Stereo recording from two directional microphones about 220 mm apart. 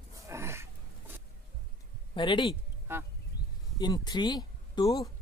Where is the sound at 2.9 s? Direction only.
10° right (ahead or behind).